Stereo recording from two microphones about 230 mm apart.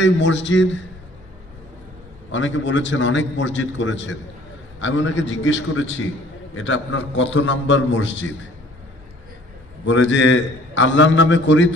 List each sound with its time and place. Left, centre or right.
0.0 s a man's voice: left
2.3 s a man's voice: left
9.8 s a man's voice: left